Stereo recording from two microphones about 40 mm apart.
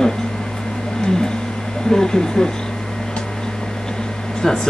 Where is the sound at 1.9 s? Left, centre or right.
Centre.